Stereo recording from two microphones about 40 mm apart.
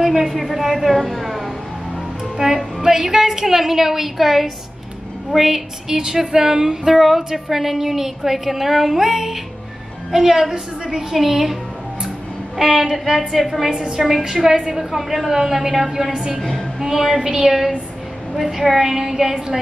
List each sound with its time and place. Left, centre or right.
0.0 s a woman's voice: centre
12.5 s a woman's voice: centre
16.3 s a woman's voice: centre
16.8 s a woman's voice: centre